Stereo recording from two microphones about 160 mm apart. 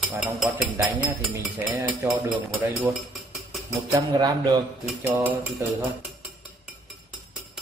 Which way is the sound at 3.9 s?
20° right (ahead or behind).